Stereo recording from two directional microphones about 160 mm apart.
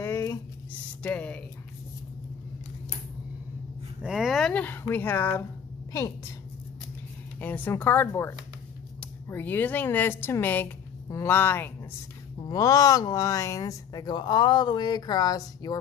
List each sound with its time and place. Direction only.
0.0 s a sound: 15° left (ahead or behind)
1.0 s speech: 10° left (ahead or behind)
4.0 s speech: 5° right (ahead or behind); by 5.4 s 10° left (ahead or behind)
7.3 s speech: 10° left (ahead or behind)
12.4 s speech: 25° left (ahead or behind)